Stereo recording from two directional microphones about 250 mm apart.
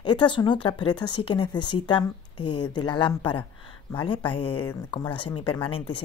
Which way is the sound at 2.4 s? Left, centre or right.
Left.